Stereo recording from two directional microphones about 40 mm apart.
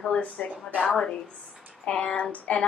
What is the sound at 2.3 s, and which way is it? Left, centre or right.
Speech, left.